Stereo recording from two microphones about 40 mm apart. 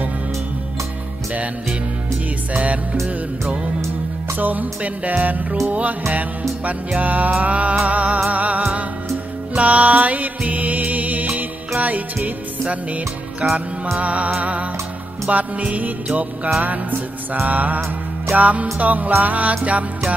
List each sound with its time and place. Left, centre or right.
2.5 s music: right
4.4 s music: right
7.0 s music: right
17.5 s music: right